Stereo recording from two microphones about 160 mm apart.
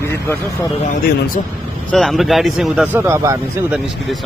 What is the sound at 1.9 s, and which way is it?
A man's voice, centre (ahead or behind).